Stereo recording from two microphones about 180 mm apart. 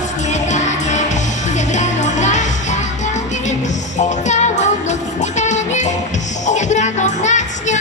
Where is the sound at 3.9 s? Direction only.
40° left (ahead or behind).